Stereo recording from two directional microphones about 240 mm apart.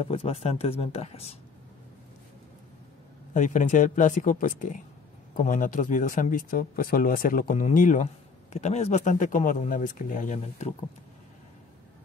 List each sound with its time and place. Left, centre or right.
0.1 s speech: left
3.3 s a man's voice: left